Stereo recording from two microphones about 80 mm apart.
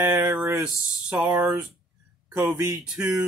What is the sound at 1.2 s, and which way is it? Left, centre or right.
Speech, right.